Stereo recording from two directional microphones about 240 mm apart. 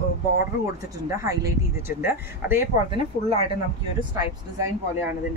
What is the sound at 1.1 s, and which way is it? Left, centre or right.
A woman's voice, centre.